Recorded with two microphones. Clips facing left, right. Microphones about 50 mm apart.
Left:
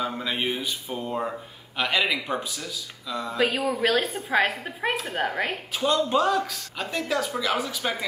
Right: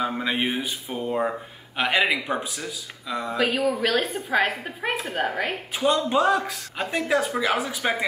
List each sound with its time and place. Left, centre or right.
0.0 s speech: centre
3.3 s a man's voice: centre
5.7 s speech: centre